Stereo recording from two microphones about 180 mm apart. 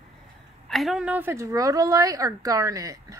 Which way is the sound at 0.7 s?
Centre (ahead or behind).